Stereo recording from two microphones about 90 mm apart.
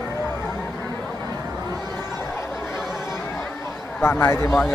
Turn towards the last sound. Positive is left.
turn(degrees=30)  # may be behind; listen again after turning